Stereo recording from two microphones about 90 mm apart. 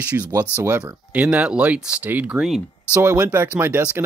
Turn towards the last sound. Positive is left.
turn(degrees=-25)  # may be behind; listen again after turning